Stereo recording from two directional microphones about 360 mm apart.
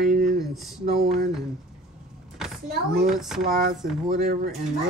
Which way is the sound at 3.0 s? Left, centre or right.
Centre.